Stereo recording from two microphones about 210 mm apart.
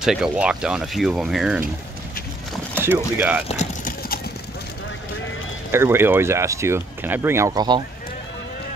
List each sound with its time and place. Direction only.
0.0 s speech: centre (ahead or behind)
2.8 s speech: 10° right (ahead or behind)
3.4 s clip-clop: 30° left (ahead or behind)
5.7 s speech: 10° right (ahead or behind)